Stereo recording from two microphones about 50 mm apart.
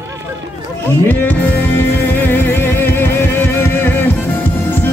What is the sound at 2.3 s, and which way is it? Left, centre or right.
Music, left.